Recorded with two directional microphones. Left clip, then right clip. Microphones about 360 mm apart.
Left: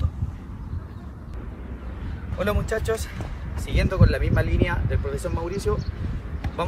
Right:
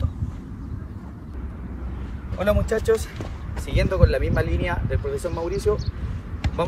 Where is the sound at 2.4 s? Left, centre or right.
Centre.